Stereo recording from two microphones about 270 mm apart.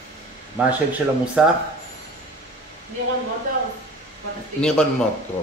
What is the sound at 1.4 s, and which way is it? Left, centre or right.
Speech, centre.